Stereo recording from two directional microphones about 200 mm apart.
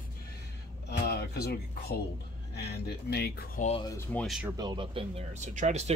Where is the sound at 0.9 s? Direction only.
55° left (ahead or behind).